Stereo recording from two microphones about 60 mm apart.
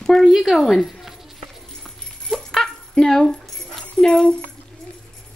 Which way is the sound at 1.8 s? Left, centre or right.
Centre.